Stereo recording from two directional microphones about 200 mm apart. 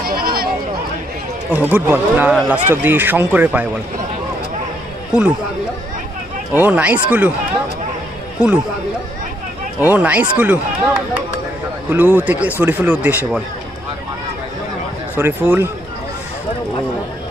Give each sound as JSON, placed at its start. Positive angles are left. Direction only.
{"t": 0.0, "sound": "a sound", "side_deg": -50}
{"t": 1.5, "sound": "speech", "side_deg": -10}
{"t": 6.5, "sound": "speech", "side_deg": -10}
{"t": 9.8, "sound": "speech", "side_deg": -10}
{"t": 15.1, "sound": "speech", "side_deg": -10}